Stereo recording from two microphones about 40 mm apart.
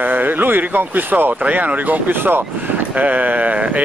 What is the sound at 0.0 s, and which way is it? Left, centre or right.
Speech, right.